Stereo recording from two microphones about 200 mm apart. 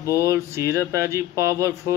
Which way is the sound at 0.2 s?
15° right (ahead or behind).